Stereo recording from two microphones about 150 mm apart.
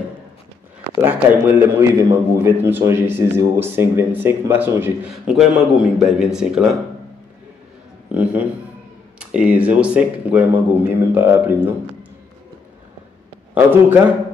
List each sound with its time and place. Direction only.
1.0 s a man's voice: 15° right (ahead or behind)
5.1 s a man's voice: centre (ahead or behind)
8.1 s a sound: 10° right (ahead or behind)
9.2 s a man's voice: 5° right (ahead or behind)
13.7 s a man's voice: 10° right (ahead or behind)